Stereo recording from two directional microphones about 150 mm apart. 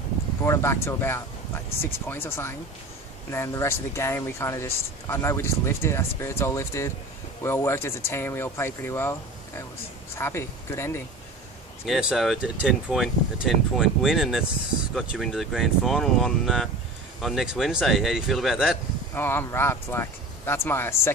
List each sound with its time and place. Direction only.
0.5 s speech: 20° left (ahead or behind)
10.1 s speech: 15° left (ahead or behind)
11.8 s speech: 5° right (ahead or behind)
19.1 s speech: 15° left (ahead or behind)